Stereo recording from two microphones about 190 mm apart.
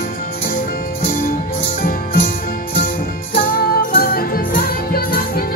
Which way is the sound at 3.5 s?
50° left (ahead or behind).